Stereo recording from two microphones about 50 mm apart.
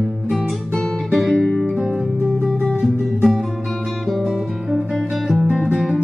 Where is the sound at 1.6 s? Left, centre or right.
Centre.